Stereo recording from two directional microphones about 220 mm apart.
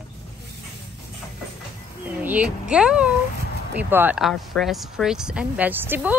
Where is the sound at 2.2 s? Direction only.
5° right (ahead or behind).